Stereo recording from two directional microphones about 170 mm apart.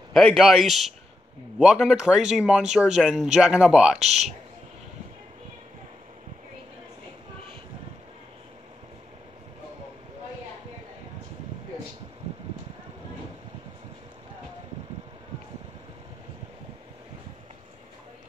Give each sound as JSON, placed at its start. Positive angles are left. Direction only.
{"t": 0.1, "sound": "speech", "side_deg": 5}
{"t": 4.0, "sound": "speech", "side_deg": -40}